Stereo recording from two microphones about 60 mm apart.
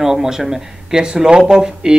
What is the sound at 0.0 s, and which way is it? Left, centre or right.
Speech, centre.